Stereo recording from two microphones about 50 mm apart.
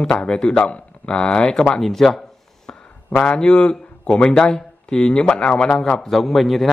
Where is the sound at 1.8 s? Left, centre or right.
Centre.